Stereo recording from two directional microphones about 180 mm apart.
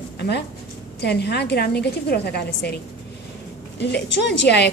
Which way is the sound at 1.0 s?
65° left (ahead or behind).